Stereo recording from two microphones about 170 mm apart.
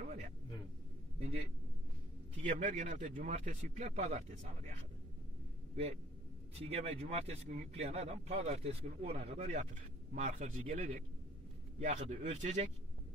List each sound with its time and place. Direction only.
0.0 s a sound: 50° right (ahead or behind)
2.4 s a man's voice: 50° right (ahead or behind)
6.5 s a man's voice: 35° right (ahead or behind)